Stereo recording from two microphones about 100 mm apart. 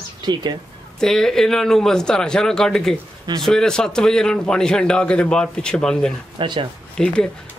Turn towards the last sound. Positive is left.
turn(degrees=10)  # may be behind; listen again after turning